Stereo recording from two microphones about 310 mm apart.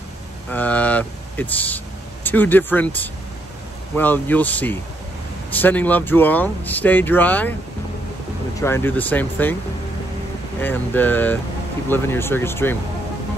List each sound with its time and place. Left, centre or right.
0.5 s speech: centre
8.5 s speech: centre
10.6 s speech: centre